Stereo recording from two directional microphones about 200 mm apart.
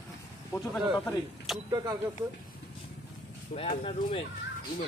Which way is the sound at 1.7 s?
20° right (ahead or behind).